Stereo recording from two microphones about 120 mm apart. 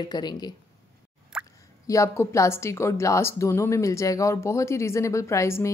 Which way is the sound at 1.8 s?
25° left (ahead or behind).